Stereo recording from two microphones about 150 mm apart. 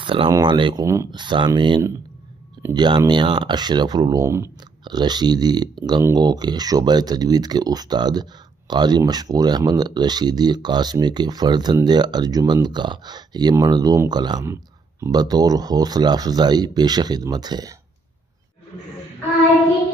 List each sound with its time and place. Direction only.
0.0 s speech: 35° right (ahead or behind)
0.8 s speech: 20° right (ahead or behind)
1.2 s speech: 30° right (ahead or behind)
4.8 s speech: 30° right (ahead or behind)
14.4 s speech: 20° right (ahead or behind)